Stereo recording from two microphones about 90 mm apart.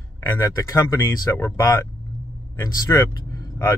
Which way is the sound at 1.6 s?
45° left (ahead or behind).